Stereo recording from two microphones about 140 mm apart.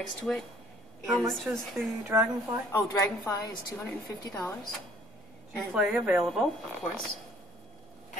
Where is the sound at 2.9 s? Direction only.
25° left (ahead or behind).